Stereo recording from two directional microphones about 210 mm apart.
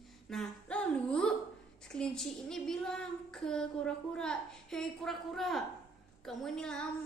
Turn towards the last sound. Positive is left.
turn(degrees=5)  # may be behind; listen again after turning